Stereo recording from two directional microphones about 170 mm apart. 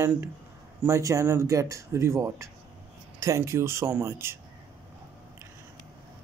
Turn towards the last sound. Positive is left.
turn(degrees=-15)  # may be behind; listen again after turning